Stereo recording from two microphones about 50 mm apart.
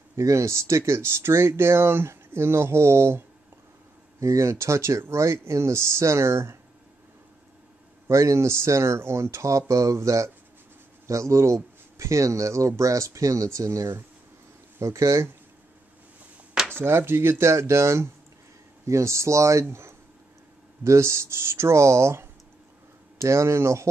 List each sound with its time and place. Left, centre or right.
0.1 s speech: right
4.2 s speech: right
8.1 s speech: right
14.8 s speech: right
16.7 s speech: right
18.9 s speech: right
20.8 s speech: right
23.2 s speech: right